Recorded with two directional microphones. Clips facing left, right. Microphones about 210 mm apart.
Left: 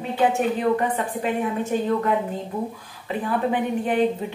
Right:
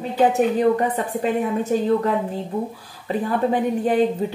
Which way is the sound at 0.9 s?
40° right (ahead or behind).